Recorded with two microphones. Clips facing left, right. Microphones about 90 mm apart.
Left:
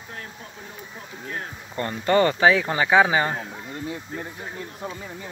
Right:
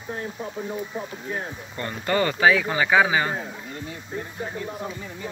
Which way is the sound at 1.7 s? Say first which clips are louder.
Left 5 dB; 30° left (ahead or behind).